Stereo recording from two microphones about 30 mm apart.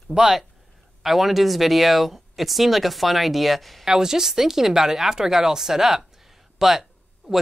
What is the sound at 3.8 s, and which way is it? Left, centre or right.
Speech, centre.